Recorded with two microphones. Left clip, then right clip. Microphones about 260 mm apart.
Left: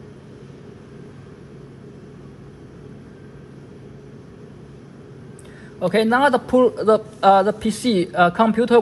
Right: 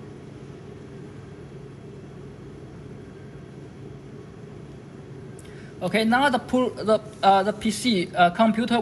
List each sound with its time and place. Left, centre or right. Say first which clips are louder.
5.8 s a man's voice: left 5 dB; left